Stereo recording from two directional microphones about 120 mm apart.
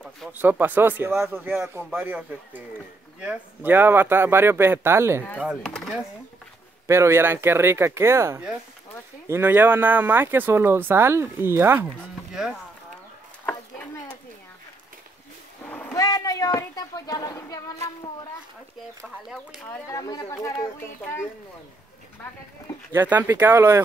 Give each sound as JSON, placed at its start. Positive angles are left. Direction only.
{"t": 0.3, "sound": "speech", "side_deg": -15}
{"t": 3.2, "sound": "speech", "side_deg": -15}
{"t": 5.4, "sound": "speech", "side_deg": -5}
{"t": 5.7, "sound": "speech", "side_deg": 5}
{"t": 6.9, "sound": "speech", "side_deg": -20}
{"t": 13.5, "sound": "a sound", "side_deg": 10}
{"t": 15.9, "sound": "a sound", "side_deg": 30}
{"t": 19.9, "sound": "speech", "side_deg": 30}
{"t": 22.9, "sound": "speech", "side_deg": -15}